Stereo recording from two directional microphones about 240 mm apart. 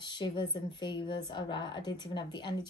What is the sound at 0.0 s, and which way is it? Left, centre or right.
Speech, centre.